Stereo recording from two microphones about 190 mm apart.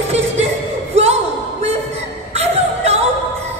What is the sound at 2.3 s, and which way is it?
Music, 35° right (ahead or behind).